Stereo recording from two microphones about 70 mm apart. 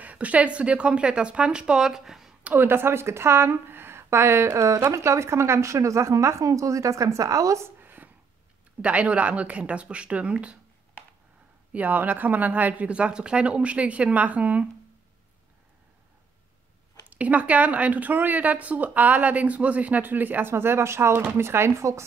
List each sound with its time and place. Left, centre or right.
0.0 s speech: right
2.4 s a woman's voice: right
7.8 s a sound: right
8.8 s speech: centre
11.7 s speech: right
17.1 s speech: right